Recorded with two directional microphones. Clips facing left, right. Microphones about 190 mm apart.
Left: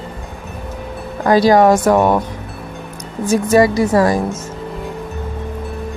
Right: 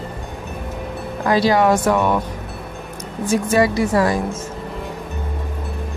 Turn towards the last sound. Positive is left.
turn(degrees=40)  # may be behind; listen again after turning